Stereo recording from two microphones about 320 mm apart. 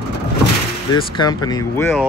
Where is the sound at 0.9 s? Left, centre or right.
Centre.